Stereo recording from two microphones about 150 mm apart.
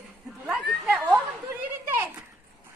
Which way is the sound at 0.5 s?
10° right (ahead or behind).